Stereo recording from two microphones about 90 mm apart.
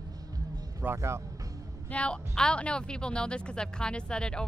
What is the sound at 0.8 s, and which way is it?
Speech, 30° right (ahead or behind).